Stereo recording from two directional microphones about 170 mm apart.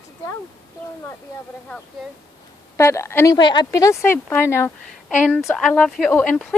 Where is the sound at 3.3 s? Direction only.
25° left (ahead or behind).